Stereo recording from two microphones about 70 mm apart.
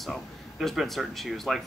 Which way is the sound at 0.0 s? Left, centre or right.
Centre.